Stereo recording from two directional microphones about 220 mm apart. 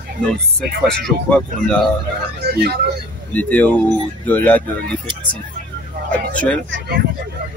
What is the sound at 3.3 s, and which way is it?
A man's voice, 5° left (ahead or behind).